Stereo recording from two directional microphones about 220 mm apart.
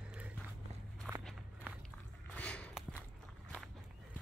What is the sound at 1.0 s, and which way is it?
Walk, 5° right (ahead or behind).